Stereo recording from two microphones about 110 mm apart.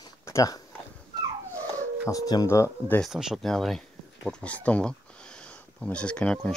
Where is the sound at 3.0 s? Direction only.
5° right (ahead or behind).